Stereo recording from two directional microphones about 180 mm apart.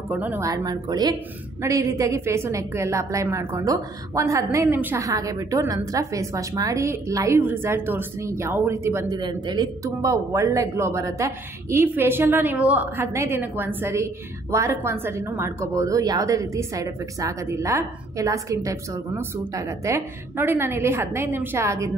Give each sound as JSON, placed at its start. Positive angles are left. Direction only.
{"t": 0.1, "sound": "speech", "side_deg": -10}